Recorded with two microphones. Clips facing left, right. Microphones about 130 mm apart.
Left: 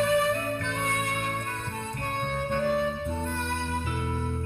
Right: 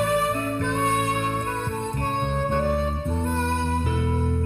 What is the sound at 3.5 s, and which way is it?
Music, 50° right (ahead or behind).